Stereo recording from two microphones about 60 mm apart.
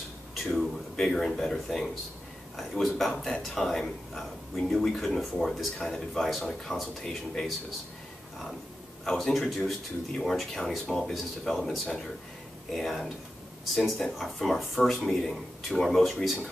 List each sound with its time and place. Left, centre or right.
0.3 s a sound: centre
0.9 s speech: centre
9.0 s speech: centre
14.1 s speech: centre